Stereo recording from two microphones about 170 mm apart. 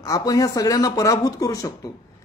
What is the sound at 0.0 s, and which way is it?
Speech, 20° left (ahead or behind).